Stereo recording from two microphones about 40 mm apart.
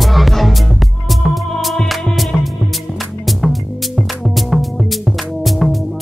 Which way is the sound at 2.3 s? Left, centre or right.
Centre.